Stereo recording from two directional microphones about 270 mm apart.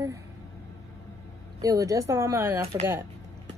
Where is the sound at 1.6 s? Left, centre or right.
Centre.